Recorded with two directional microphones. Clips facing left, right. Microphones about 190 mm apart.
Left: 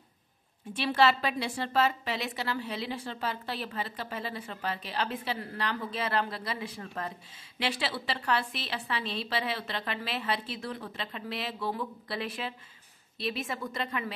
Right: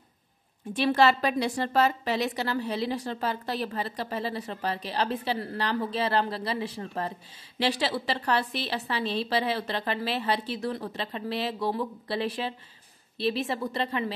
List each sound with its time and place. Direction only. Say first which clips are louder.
0.7 s a woman's voice: right 3 dB; 45° right (ahead or behind)